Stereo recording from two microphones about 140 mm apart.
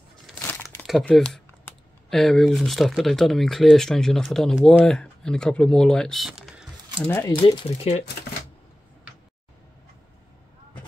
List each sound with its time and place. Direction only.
0.4 s crumpling: 15° left (ahead or behind)
0.8 s speech: 5° left (ahead or behind)
7.1 s speech: 15° left (ahead or behind)
7.4 s speech: 40° left (ahead or behind)